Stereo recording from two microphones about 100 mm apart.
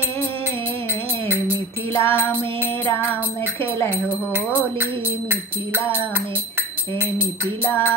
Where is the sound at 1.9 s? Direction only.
25° left (ahead or behind).